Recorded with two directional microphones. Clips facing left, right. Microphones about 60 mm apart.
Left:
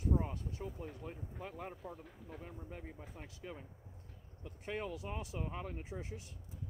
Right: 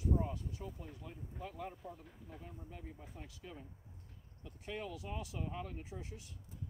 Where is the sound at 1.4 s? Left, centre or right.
Left.